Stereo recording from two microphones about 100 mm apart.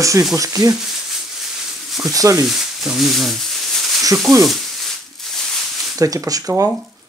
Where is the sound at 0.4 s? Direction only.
35° right (ahead or behind).